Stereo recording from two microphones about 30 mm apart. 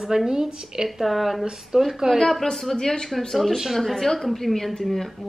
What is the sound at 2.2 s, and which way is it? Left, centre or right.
A woman's voice, centre.